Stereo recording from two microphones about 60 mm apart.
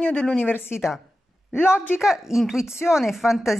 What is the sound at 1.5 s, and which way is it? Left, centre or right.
Speech, left.